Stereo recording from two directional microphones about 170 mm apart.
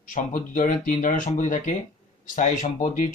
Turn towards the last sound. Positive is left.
turn(degrees=50)  # may be behind; listen again after turning